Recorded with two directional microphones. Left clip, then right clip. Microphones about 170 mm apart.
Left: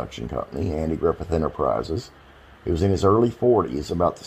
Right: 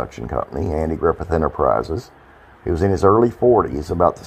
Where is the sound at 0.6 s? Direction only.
5° left (ahead or behind).